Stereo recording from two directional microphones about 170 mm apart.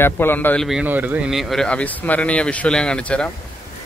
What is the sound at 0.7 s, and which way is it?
Speech, 10° right (ahead or behind).